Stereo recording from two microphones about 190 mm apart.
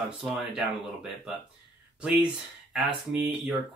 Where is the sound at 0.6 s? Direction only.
5° right (ahead or behind).